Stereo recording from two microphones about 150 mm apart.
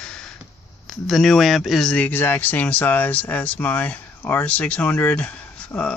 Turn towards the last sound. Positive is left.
turn(degrees=10)  # may be behind; listen again after turning